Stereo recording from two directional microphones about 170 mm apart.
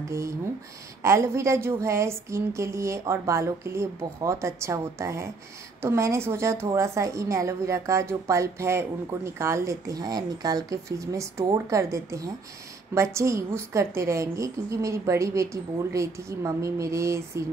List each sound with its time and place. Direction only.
1.0 s a woman's voice: 15° right (ahead or behind)